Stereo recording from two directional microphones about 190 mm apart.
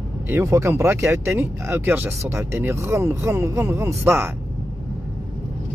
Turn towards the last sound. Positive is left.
turn(degrees=-10)  # may be behind; listen again after turning